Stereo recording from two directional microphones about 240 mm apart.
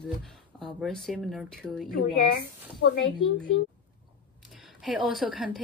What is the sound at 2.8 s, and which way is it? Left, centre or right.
Speech, left.